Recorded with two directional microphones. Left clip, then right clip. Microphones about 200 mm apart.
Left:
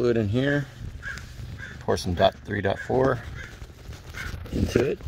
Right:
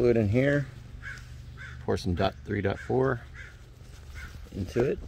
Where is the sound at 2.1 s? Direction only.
20° left (ahead or behind).